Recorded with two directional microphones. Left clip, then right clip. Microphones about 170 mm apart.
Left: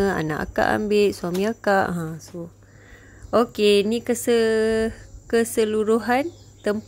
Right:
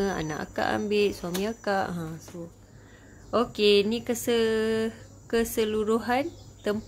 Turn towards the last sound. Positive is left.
turn(degrees=30)  # may be behind; listen again after turning